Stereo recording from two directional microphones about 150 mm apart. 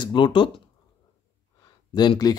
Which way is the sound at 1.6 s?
30° left (ahead or behind).